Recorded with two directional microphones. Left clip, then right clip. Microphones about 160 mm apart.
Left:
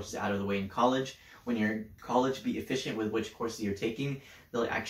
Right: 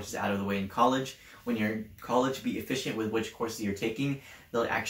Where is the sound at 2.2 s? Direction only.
20° right (ahead or behind).